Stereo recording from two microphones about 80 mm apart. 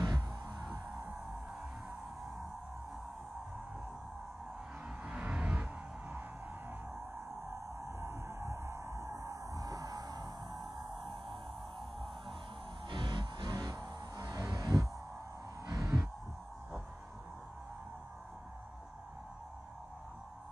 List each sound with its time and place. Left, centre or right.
0.0 s music: right
5.0 s music: centre
7.8 s music: right
12.8 s music: right
13.6 s music: right
14.5 s a sound: right